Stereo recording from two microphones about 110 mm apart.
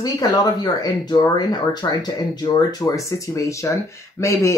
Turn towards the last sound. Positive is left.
turn(degrees=25)  # may be behind; listen again after turning